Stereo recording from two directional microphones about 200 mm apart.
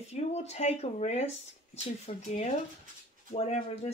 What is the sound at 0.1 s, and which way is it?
Speech, 35° left (ahead or behind).